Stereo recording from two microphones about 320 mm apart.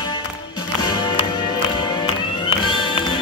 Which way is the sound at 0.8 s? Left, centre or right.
Centre.